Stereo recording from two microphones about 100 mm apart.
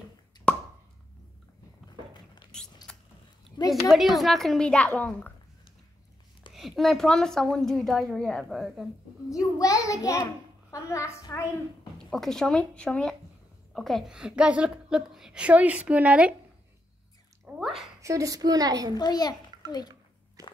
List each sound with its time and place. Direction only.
1.9 s a sound: 45° left (ahead or behind)
3.5 s a child's voice: 40° left (ahead or behind)
3.9 s a woman's voice: centre (ahead or behind)
6.5 s a woman's voice: centre (ahead or behind)
9.3 s a child's voice: 35° left (ahead or behind)
12.0 s a woman's voice: 5° left (ahead or behind); by 16.3 s 10° right (ahead or behind)
17.6 s a woman's voice: centre (ahead or behind)
18.0 s a woman's voice: 35° right (ahead or behind)
18.9 s a child's voice: 45° left (ahead or behind)
20.4 s walk: 35° right (ahead or behind)